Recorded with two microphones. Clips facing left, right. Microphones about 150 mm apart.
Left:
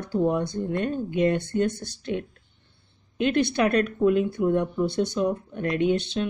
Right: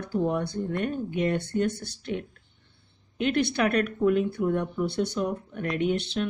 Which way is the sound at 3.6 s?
25° left (ahead or behind).